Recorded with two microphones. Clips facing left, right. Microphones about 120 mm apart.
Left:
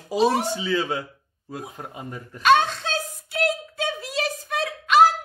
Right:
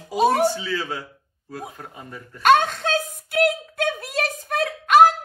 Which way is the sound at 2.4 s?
50° right (ahead or behind).